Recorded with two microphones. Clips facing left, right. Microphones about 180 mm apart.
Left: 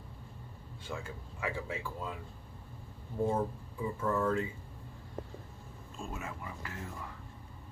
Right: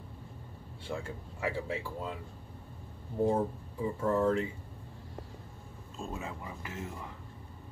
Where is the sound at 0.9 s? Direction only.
15° right (ahead or behind).